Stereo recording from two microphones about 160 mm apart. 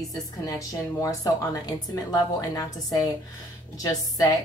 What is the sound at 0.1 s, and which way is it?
A woman's voice, 25° left (ahead or behind).